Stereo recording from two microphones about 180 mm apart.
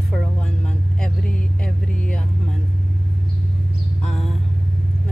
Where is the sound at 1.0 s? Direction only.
5° left (ahead or behind).